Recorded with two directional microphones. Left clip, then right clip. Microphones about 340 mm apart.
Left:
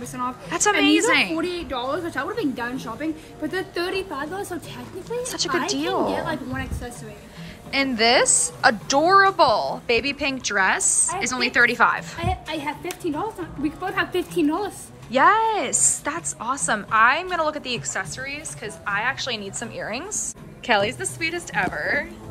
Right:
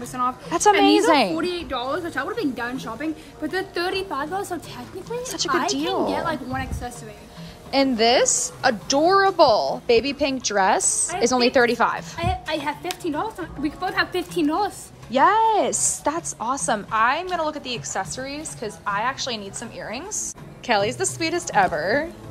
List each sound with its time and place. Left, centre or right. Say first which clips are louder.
0.1 s a woman's voice: right 4 dB; centre
1.3 s a woman's voice: right 1 dB; centre